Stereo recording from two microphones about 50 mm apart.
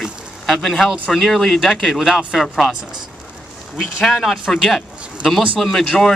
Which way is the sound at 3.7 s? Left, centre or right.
Centre.